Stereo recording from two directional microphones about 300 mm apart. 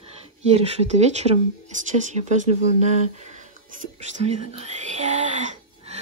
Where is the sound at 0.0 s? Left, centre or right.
Right.